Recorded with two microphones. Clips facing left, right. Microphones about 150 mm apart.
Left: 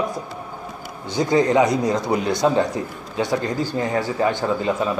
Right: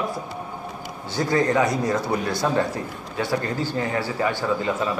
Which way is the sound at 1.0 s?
15° left (ahead or behind).